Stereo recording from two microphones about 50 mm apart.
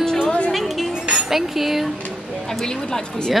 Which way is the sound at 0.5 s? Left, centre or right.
Centre.